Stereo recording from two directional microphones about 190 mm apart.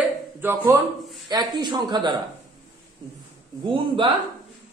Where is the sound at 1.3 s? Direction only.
20° right (ahead or behind).